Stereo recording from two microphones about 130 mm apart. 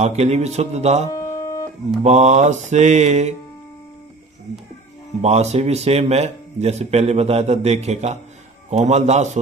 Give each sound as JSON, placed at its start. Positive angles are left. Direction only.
{"t": 0.0, "sound": "a man's voice", "side_deg": -55}
{"t": 1.1, "sound": "music", "side_deg": 25}
{"t": 2.0, "sound": "a man's voice", "side_deg": -60}
{"t": 5.2, "sound": "a man's voice", "side_deg": -60}